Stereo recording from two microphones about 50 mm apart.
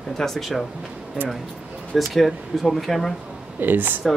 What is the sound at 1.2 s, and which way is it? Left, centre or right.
Speech, centre.